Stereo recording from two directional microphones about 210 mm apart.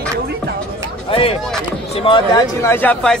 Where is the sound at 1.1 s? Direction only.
25° left (ahead or behind).